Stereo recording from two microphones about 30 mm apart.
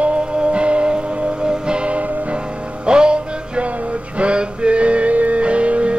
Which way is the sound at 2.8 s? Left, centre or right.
Right.